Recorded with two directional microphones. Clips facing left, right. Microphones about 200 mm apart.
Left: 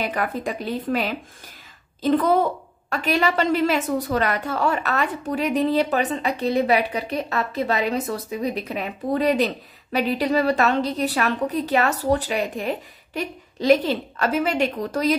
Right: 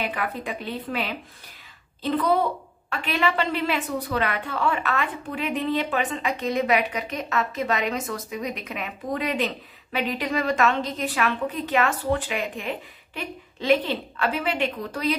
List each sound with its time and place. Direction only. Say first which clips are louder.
0.0 s a woman's voice: left 4 dB; 40° left (ahead or behind)